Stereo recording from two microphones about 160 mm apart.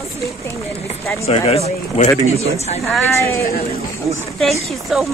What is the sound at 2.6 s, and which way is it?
Speech, 40° left (ahead or behind).